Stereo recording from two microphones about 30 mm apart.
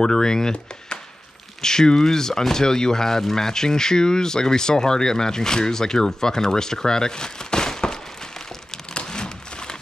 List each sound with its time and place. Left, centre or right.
0.0 s speech: left
1.6 s speech: left
9.0 s a sound: left